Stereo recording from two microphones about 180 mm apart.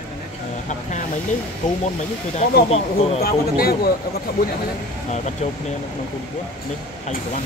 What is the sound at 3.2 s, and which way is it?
Speech, 60° left (ahead or behind).